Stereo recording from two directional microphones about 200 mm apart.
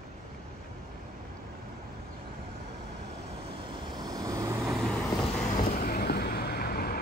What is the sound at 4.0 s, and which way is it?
Vehicle, 20° right (ahead or behind).